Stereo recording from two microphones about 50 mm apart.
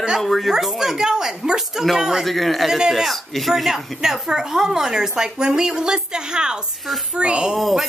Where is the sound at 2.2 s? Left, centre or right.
Centre.